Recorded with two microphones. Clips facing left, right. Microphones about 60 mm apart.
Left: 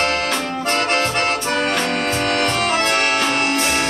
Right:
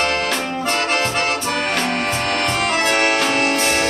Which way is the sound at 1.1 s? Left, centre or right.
Centre.